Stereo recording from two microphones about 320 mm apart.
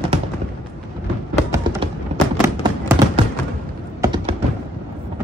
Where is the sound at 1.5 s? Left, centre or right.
Centre.